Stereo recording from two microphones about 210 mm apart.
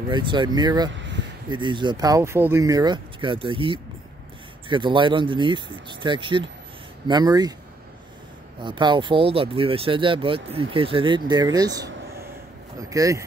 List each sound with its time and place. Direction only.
0.1 s speech: 20° right (ahead or behind)
8.5 s speech: 20° right (ahead or behind)